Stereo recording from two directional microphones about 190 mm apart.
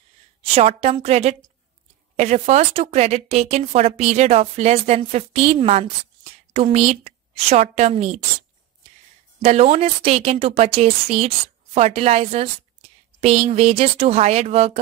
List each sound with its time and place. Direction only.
0.4 s speech: 30° right (ahead or behind)
9.4 s speech: 35° right (ahead or behind)